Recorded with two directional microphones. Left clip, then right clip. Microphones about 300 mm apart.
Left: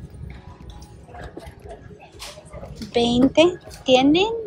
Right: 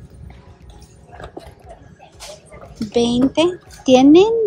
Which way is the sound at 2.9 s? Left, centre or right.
Centre.